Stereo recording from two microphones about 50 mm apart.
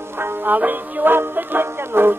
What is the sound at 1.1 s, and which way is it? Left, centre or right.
Music, right.